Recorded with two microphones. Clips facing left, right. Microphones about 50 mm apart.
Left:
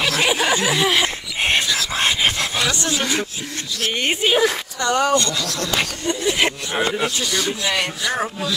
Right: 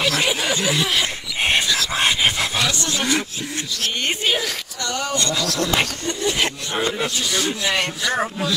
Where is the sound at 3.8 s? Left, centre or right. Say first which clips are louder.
Left 3 dB; centre.